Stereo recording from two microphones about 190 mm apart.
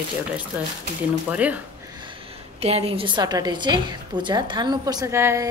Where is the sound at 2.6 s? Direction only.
30° right (ahead or behind).